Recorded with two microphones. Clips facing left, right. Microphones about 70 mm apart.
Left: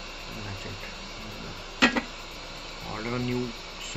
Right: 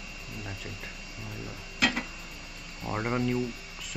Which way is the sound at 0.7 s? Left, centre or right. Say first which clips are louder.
Left 3 dB; left.